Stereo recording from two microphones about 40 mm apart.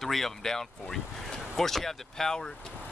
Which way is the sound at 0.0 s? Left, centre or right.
Centre.